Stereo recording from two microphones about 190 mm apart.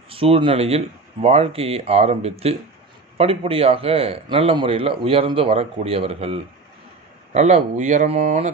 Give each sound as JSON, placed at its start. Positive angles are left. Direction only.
{"t": 0.1, "sound": "a man's voice", "side_deg": -30}